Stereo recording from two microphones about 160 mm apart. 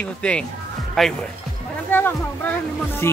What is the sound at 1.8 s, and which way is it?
Speech, 10° left (ahead or behind).